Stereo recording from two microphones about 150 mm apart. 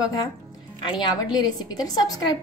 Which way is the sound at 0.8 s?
30° left (ahead or behind).